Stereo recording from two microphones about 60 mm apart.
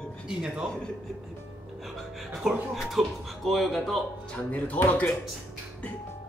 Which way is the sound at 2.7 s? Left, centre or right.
Centre.